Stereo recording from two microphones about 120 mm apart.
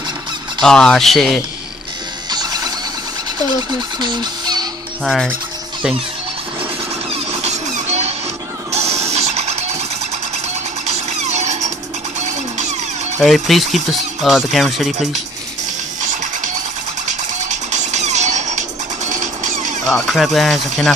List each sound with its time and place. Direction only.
0.6 s speech: 5° left (ahead or behind)
2.3 s mechanisms: 35° right (ahead or behind)
4.0 s a sound: 35° right (ahead or behind)
5.0 s speech: centre (ahead or behind)
7.1 s a sound: 65° right (ahead or behind)
8.7 s music: 60° right (ahead or behind)
10.9 s music: 65° right (ahead or behind)
13.2 s speech: centre (ahead or behind)
16.0 s music: 90° right
17.1 s music: 75° right (ahead or behind)
19.9 s speech: 5° left (ahead or behind)